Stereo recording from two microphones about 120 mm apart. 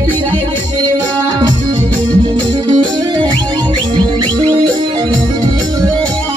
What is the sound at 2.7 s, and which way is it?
Music, 40° right (ahead or behind).